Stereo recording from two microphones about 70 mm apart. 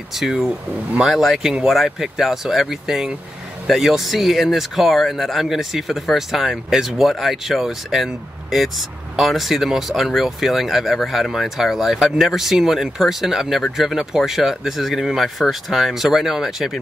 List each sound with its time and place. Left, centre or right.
0.1 s speech: centre